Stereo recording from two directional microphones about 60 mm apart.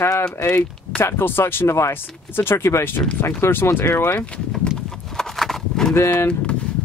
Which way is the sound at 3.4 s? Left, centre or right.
Left.